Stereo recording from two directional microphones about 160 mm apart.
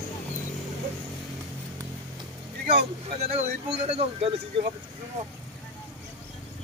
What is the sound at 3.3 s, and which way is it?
Speech, 45° right (ahead or behind).